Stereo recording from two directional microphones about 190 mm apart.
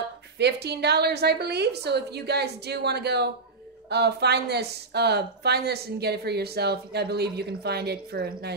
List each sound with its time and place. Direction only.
0.4 s speech: 60° right (ahead or behind)